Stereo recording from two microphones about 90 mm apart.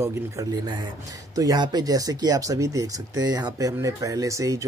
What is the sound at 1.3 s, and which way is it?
Speech, 45° right (ahead or behind).